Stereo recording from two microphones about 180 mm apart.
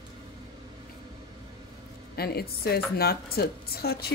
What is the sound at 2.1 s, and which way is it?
Speech, 60° left (ahead or behind).